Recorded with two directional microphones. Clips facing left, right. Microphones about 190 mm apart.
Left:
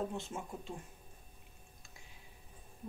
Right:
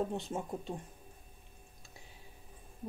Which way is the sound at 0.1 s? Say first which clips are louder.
Right 5 dB; 35° right (ahead or behind).